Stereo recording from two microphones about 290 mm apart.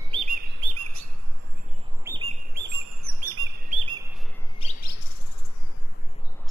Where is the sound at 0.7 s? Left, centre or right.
Right.